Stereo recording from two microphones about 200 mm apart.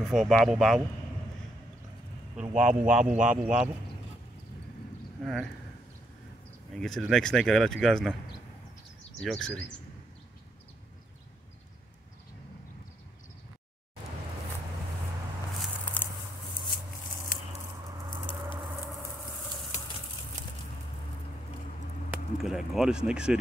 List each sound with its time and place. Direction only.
0.0 s speech: centre (ahead or behind)
2.5 s speech: 5° right (ahead or behind)
5.2 s speech: centre (ahead or behind)
6.7 s speech: centre (ahead or behind)
9.2 s speech: 5° left (ahead or behind)
15.8 s a sound: 10° left (ahead or behind)
17.3 s a sound: 45° left (ahead or behind)
22.4 s speech: centre (ahead or behind)